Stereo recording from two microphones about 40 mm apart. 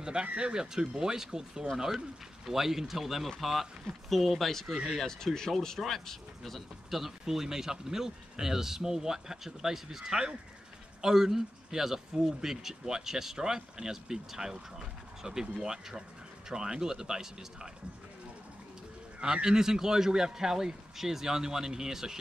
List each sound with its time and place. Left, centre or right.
0.0 s speech: right
19.2 s speech: centre